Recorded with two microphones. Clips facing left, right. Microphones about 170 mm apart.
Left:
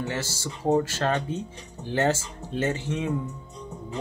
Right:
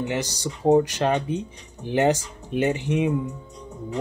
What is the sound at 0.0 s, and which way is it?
Speech, 15° right (ahead or behind).